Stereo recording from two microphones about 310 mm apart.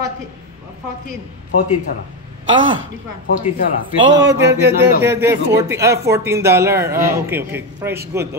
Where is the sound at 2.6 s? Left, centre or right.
Right.